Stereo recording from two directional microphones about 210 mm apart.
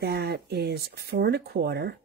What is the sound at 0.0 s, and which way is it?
Speech, 50° right (ahead or behind).